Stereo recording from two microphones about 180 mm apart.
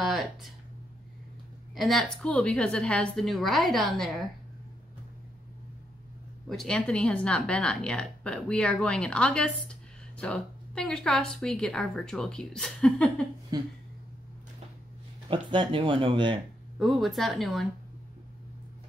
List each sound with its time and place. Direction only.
0.0 s a woman's voice: centre (ahead or behind)
1.8 s a woman's voice: centre (ahead or behind)
6.5 s a woman's voice: 5° left (ahead or behind)
13.5 s speech: 20° right (ahead or behind)
15.2 s speech: 30° right (ahead or behind)
16.7 s a woman's voice: centre (ahead or behind)